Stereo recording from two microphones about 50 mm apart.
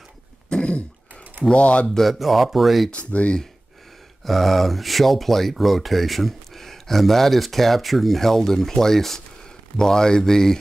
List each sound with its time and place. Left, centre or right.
0.5 s throat clearing: left
1.5 s speech: left
2.0 s speech: centre
2.9 s speech: left
4.3 s speech: centre